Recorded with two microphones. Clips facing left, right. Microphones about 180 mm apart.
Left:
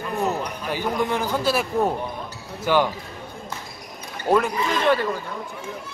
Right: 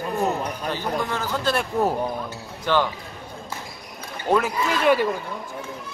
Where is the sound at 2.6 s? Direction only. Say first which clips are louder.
Left 2 dB; 10° left (ahead or behind).